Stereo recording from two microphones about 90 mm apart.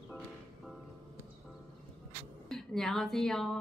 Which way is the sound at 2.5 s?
5° left (ahead or behind).